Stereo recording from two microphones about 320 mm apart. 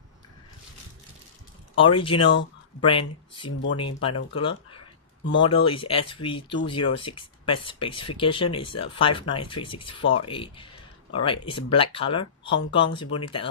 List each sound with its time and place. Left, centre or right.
1.8 s speech: centre